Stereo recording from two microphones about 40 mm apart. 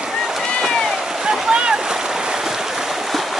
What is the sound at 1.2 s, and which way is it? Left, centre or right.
Boat, centre.